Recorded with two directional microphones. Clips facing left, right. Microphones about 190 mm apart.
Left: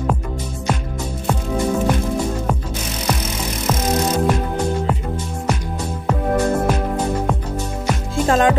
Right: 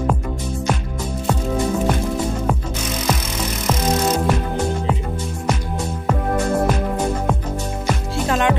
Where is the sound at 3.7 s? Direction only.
5° right (ahead or behind).